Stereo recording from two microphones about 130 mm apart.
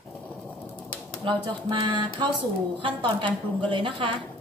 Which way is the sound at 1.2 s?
40° right (ahead or behind).